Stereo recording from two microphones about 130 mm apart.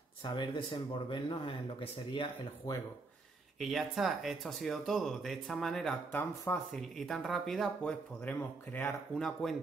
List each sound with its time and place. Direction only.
0.2 s speech: 40° left (ahead or behind)
3.5 s speech: centre (ahead or behind)
6.1 s speech: 20° left (ahead or behind)
6.7 s speech: centre (ahead or behind)
8.2 s speech: 15° left (ahead or behind)
9.1 s speech: centre (ahead or behind)